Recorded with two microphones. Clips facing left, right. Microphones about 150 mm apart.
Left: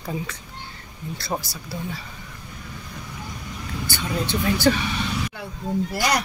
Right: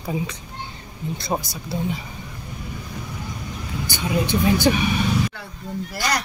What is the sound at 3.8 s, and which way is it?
Speech, 15° right (ahead or behind).